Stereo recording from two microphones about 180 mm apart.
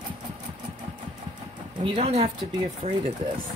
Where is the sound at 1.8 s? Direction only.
30° right (ahead or behind).